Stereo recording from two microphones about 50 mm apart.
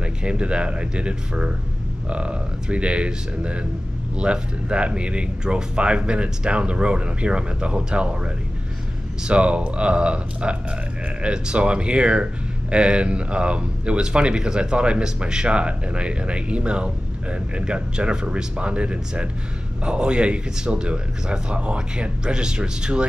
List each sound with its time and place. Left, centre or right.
0.0 s speech: right
9.3 s speech: right